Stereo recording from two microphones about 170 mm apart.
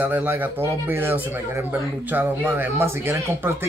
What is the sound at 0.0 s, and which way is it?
A man's voice, 10° right (ahead or behind).